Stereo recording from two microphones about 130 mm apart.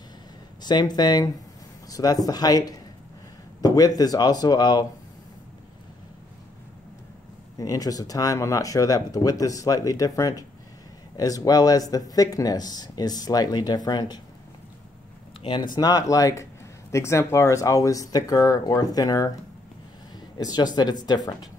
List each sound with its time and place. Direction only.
0.6 s speech: 35° left (ahead or behind)
7.5 s speech: 25° left (ahead or behind)
15.7 s speech: 30° left (ahead or behind)
20.3 s speech: 30° left (ahead or behind)